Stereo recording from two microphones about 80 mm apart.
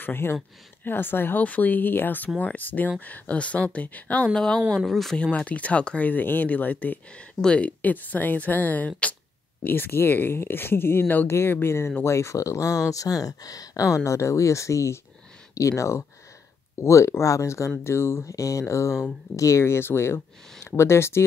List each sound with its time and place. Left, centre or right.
0.0 s speech: left